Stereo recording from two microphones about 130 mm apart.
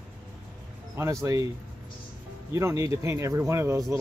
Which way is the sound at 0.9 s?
25° right (ahead or behind).